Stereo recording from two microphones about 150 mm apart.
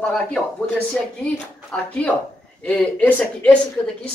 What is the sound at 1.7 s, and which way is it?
A woman's voice, 5° left (ahead or behind).